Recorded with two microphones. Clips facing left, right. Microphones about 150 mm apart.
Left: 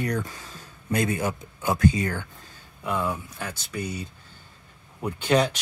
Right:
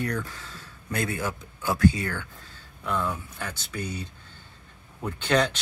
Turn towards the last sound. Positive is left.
turn(degrees=10)  # may be behind; listen again after turning